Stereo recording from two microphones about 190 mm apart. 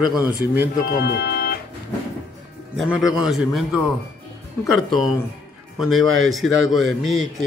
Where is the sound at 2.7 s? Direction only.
Centre (ahead or behind).